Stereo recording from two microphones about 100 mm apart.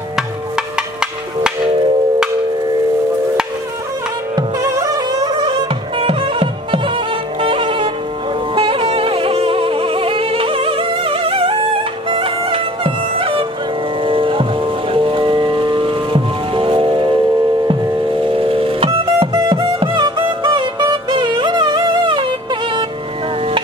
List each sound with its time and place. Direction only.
4.4 s mosquito: 35° right (ahead or behind)
5.5 s music: 65° right (ahead or behind)
8.5 s music: 70° right (ahead or behind)
18.2 s music: 60° right (ahead or behind)